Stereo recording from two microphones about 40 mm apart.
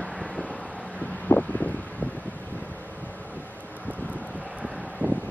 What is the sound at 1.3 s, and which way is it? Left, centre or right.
Wind, left.